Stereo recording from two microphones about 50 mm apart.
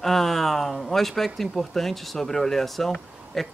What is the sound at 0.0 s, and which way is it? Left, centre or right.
Speech, centre.